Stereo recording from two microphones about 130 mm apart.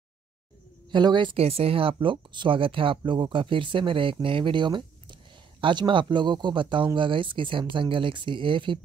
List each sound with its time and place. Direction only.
0.9 s speech: 35° right (ahead or behind)